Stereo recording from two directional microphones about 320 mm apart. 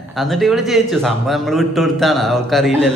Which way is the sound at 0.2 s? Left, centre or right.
Centre.